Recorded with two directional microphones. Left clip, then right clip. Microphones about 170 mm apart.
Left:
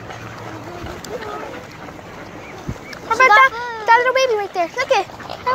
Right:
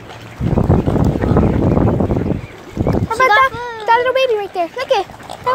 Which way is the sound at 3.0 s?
30° right (ahead or behind).